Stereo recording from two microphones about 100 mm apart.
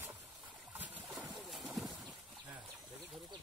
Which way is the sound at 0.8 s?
10° right (ahead or behind).